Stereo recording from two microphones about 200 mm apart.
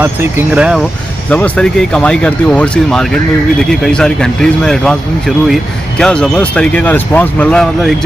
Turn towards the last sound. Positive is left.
turn(degrees=5)  # may be behind; listen again after turning